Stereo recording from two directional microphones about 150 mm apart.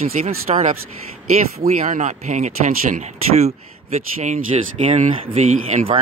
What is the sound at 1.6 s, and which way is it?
Speech, 60° right (ahead or behind).